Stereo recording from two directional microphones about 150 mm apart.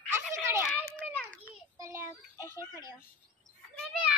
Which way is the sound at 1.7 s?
20° right (ahead or behind).